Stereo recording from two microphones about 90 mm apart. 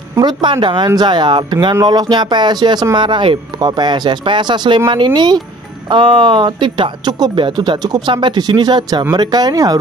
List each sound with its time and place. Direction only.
0.2 s speech: 55° right (ahead or behind)